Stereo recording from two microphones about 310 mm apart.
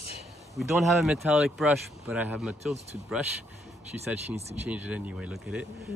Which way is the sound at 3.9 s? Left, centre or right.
Right.